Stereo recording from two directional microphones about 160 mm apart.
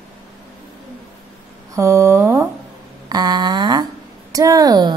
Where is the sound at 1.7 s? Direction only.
15° right (ahead or behind).